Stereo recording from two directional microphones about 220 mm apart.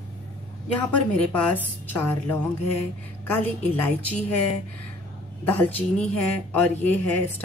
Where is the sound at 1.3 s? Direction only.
5° left (ahead or behind).